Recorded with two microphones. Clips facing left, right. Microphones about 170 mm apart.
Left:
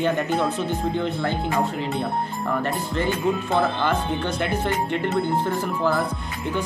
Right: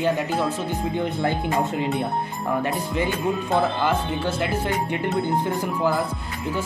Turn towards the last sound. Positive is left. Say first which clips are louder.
# left 1 dB
turn(degrees=-10)  # may be behind; listen again after turning